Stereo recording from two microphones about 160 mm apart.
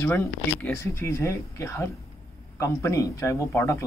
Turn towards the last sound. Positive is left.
turn(degrees=20)  # may be behind; listen again after turning